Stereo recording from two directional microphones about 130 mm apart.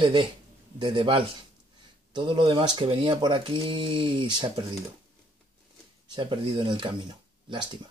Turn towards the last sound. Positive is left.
turn(degrees=-35)  # may be behind; listen again after turning